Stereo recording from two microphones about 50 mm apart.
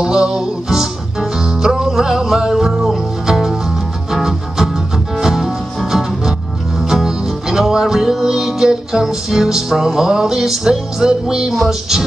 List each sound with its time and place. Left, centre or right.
0.0 s music: centre